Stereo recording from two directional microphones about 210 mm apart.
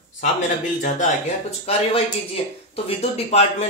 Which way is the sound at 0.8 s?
35° left (ahead or behind).